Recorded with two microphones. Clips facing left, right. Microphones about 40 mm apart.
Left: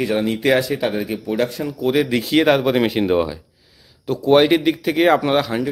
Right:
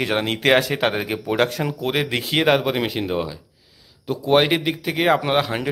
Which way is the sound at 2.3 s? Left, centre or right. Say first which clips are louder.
Left 3 dB; centre.